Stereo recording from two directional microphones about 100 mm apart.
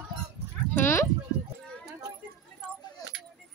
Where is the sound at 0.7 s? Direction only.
25° left (ahead or behind).